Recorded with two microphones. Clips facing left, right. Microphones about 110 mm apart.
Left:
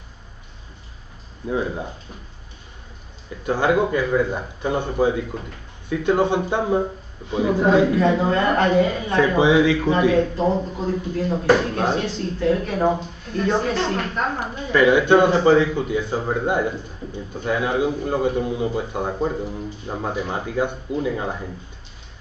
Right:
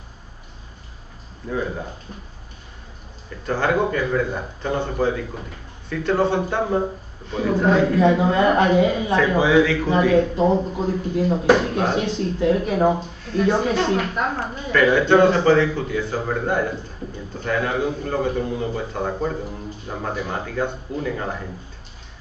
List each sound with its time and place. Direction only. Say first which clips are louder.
1.5 s a man's voice: left 2 dB; 15° left (ahead or behind)
3.4 s a man's voice: left 1 dB; 15° left (ahead or behind)
8.0 s a woman's voice: right 2 dB; 15° right (ahead or behind)
9.4 s a man's voice: left 2 dB; 20° left (ahead or behind)
10.1 s a woman's voice: right 2 dB; 10° right (ahead or behind)
14.4 s a man's voice: left 2 dB; 15° left (ahead or behind)